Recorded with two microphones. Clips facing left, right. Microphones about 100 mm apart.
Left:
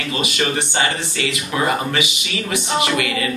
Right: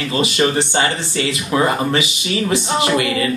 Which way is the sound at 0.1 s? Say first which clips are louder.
Right 5 dB; 30° right (ahead or behind).